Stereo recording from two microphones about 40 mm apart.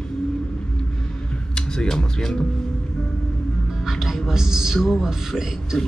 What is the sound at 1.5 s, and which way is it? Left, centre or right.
Speech, centre.